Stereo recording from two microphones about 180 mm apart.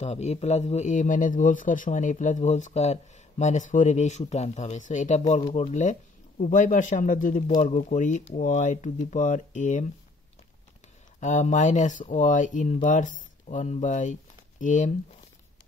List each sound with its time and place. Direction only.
0.0 s a man's voice: 40° left (ahead or behind)
11.1 s speech: 40° left (ahead or behind)